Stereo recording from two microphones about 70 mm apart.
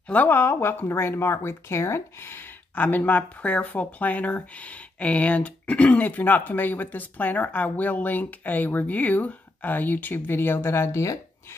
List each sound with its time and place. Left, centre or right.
0.1 s speech: left